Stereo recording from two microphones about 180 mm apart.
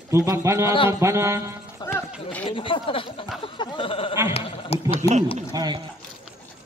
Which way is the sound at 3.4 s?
30° left (ahead or behind).